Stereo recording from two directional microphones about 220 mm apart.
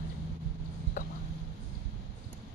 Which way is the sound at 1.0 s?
35° left (ahead or behind).